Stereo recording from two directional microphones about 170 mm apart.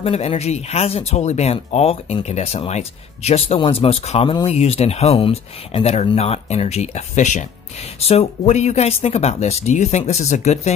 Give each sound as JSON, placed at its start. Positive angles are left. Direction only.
{"t": 0.0, "sound": "speech", "side_deg": 35}